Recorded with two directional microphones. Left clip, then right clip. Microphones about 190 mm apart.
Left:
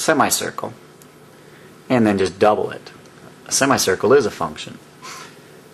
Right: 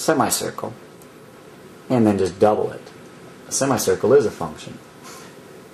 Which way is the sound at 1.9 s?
Centre (ahead or behind).